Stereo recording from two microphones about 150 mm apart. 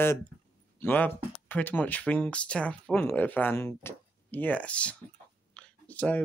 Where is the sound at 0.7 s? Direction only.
15° left (ahead or behind).